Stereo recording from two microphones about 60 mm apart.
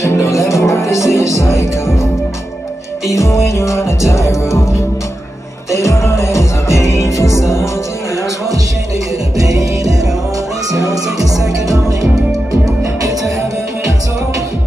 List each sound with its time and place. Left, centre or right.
0.1 s music: left
3.1 s music: left
9.4 s music: right